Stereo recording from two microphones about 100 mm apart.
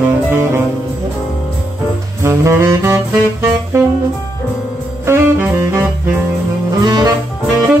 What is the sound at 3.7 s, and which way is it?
Music, 30° right (ahead or behind).